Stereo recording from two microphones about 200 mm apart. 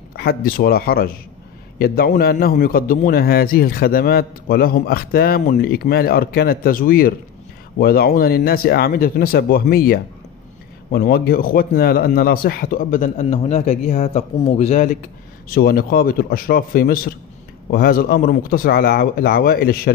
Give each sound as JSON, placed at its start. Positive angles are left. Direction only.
{"t": 0.1, "sound": "a man's voice", "side_deg": 50}
{"t": 15.5, "sound": "a man's voice", "side_deg": 50}